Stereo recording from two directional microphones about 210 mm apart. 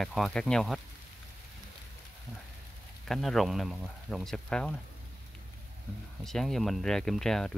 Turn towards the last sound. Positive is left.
turn(degrees=0)  # may be behind; listen again after turning